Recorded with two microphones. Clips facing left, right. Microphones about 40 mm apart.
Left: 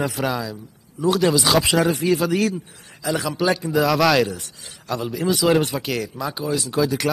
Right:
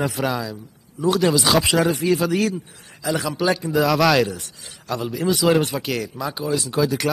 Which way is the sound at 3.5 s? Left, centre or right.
Centre.